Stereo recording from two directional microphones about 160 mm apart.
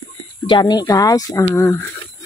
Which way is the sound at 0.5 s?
30° left (ahead or behind).